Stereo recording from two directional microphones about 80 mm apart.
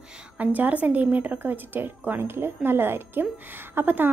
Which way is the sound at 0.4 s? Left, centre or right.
Right.